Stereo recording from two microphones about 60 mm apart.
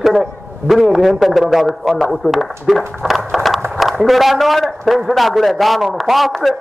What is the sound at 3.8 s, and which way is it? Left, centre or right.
A man's voice, centre.